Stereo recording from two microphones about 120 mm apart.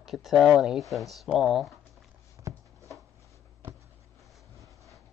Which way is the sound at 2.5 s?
25° right (ahead or behind).